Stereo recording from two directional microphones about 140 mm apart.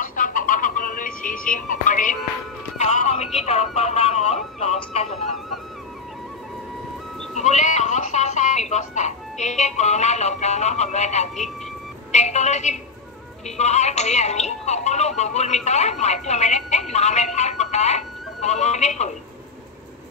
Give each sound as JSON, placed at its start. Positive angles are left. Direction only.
{"t": 0.0, "sound": "a sound", "side_deg": 70}
{"t": 2.8, "sound": "speech", "side_deg": 55}
{"t": 7.3, "sound": "speech", "side_deg": 55}